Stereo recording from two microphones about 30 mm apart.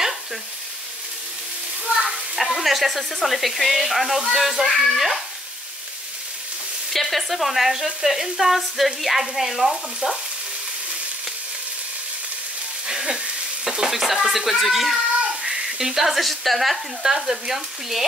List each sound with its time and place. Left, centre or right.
1.9 s speech: centre
4.3 s frying: centre
4.7 s speech: centre
6.9 s speech: centre
7.7 s frying: centre
10.0 s frying: right
12.8 s sizzle: centre
13.7 s frying: centre
15.4 s a sound: centre
16.2 s speech: centre
17.0 s frying: centre